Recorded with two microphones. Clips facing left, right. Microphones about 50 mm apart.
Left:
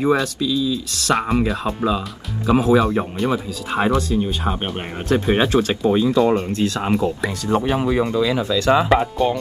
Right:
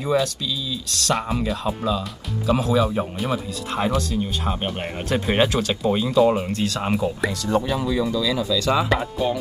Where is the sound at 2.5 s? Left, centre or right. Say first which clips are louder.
Left 5 dB; left.